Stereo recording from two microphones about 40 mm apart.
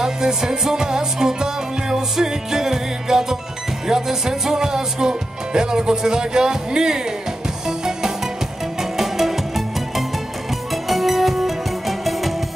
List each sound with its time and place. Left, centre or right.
0.0 s music: centre